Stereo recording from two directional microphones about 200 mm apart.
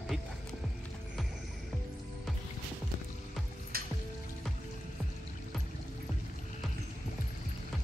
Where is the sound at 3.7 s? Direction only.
50° right (ahead or behind).